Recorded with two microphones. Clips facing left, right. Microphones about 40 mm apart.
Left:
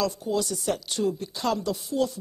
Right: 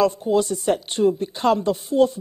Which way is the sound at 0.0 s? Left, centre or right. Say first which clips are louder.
Right 8 dB; right.